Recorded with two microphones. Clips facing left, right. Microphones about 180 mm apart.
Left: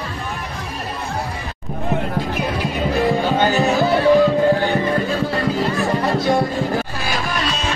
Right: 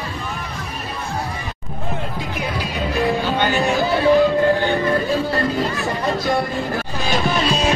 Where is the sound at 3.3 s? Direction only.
40° left (ahead or behind).